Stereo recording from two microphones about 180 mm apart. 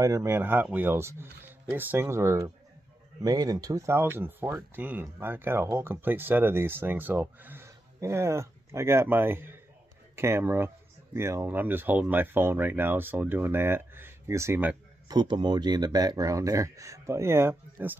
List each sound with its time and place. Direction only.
0.0 s speech: 15° right (ahead or behind)
15.0 s speech: 25° right (ahead or behind)